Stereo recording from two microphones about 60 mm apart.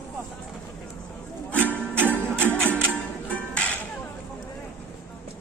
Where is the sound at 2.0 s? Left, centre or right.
Right.